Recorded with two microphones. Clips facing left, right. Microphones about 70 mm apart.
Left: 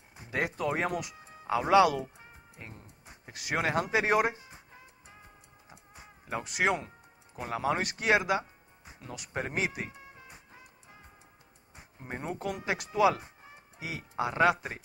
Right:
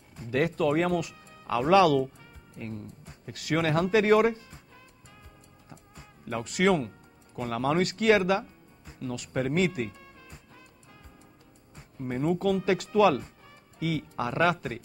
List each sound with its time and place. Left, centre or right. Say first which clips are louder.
0.1 s speech: right 5 dB; centre
5.7 s music: right 2 dB; centre
11.7 s speech: right 8 dB; centre